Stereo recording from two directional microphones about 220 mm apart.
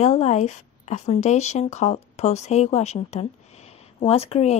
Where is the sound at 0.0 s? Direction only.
30° left (ahead or behind).